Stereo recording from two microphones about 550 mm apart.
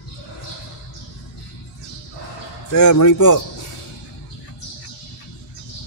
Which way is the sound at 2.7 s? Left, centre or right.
Left.